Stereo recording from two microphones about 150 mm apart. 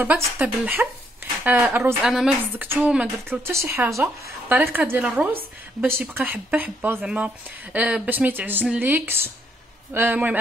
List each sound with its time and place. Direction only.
0.0 s a woman's voice: 10° right (ahead or behind)